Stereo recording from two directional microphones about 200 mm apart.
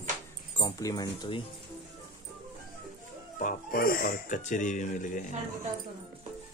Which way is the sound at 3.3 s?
45° left (ahead or behind).